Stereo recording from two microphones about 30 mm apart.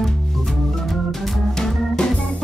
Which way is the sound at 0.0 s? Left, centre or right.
Centre.